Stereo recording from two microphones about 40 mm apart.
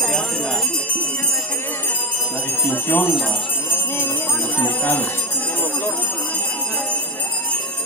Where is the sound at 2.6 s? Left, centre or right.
Left.